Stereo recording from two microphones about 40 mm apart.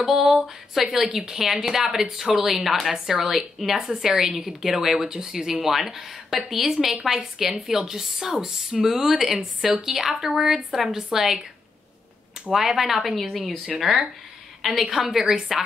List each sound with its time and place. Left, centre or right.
0.0 s speech: centre
9.0 s a woman's voice: centre
12.5 s a woman's voice: centre